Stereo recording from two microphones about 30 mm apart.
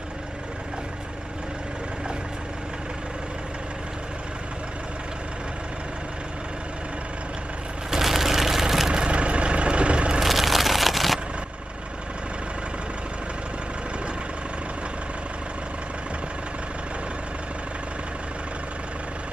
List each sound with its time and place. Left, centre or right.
7.9 s vehicle: centre
8.9 s vehicle: right
10.2 s a sound: centre